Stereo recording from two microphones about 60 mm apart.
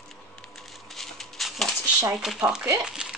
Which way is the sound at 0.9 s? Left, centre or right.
Centre.